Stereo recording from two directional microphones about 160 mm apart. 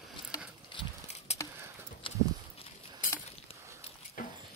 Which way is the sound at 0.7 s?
40° left (ahead or behind).